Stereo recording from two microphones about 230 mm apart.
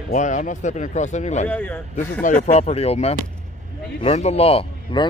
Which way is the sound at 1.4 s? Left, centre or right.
Centre.